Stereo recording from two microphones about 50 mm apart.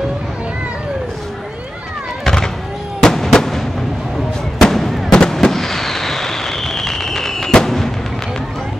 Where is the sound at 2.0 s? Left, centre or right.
Centre.